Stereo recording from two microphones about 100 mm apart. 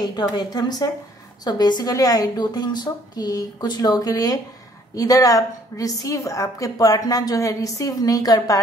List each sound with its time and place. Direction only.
0.0 s a woman's voice: 40° left (ahead or behind)